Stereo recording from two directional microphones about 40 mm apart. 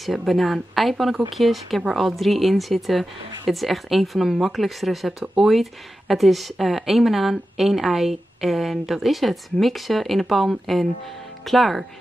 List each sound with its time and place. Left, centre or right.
0.0 s speech: centre
5.2 s speech: centre
5.5 s speech: centre